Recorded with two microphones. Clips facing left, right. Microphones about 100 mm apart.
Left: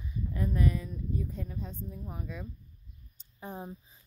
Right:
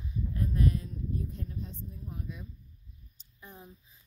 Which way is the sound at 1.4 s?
90° left.